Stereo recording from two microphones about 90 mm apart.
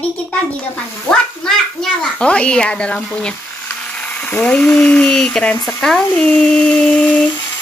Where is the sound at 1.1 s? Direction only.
10° left (ahead or behind).